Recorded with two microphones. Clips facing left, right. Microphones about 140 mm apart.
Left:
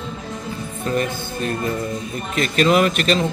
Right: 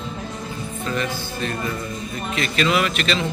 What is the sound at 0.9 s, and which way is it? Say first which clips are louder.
A man's voice: left 4 dB; 40° left (ahead or behind).